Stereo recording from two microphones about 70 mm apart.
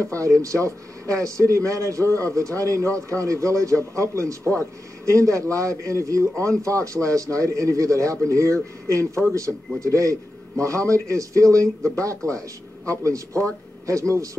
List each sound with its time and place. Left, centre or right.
0.1 s speech: right
13.0 s speech: right